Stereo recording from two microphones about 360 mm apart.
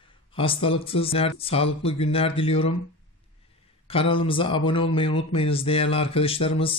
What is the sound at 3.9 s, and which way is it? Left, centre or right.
Speech, centre.